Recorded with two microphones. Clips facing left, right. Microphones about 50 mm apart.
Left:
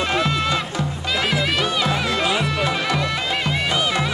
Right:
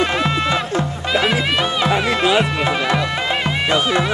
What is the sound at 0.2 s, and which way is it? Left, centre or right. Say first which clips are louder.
Music: right 2 dB; right.